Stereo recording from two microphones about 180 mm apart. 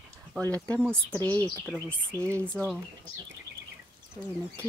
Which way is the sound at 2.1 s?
15° right (ahead or behind).